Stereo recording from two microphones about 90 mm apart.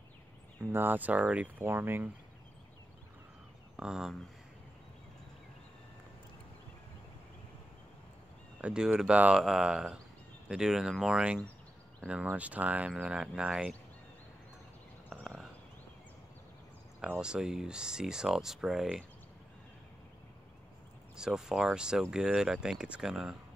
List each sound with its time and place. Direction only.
0.7 s speech: 25° right (ahead or behind)
3.7 s speech: 5° right (ahead or behind)
8.5 s speech: 10° right (ahead or behind)
15.0 s a sound: 5° right (ahead or behind)
17.2 s speech: 10° right (ahead or behind)
21.2 s speech: 5° right (ahead or behind)